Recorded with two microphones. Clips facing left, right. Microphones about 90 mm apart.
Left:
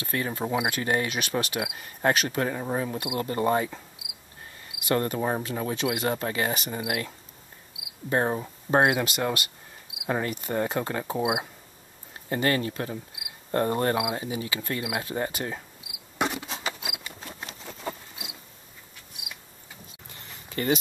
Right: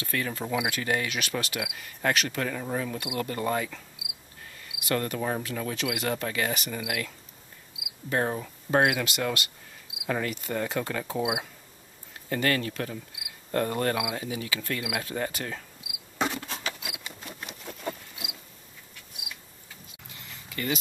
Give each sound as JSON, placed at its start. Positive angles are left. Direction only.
{"t": 0.0, "sound": "cricket", "side_deg": 25}
{"t": 16.2, "sound": "patter", "side_deg": 10}
{"t": 20.1, "sound": "a sound", "side_deg": 35}